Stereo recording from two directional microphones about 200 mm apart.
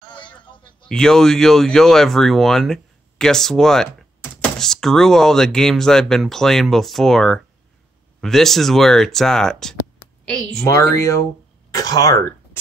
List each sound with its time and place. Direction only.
0.1 s a sound: 25° left (ahead or behind)
0.8 s speech: 5° left (ahead or behind)
10.7 s speech: 15° left (ahead or behind)